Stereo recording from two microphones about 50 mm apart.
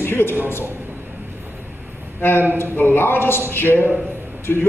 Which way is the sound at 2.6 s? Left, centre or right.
Left.